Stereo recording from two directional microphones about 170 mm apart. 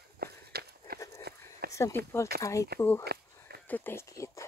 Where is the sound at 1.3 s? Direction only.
70° right (ahead or behind).